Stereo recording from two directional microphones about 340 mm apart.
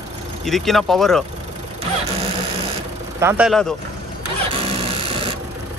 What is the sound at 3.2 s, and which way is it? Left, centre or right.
Speech, centre.